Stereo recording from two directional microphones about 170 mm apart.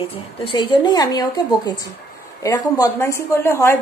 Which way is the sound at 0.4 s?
30° left (ahead or behind).